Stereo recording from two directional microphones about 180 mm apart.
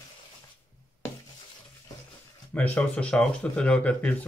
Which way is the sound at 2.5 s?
10° left (ahead or behind).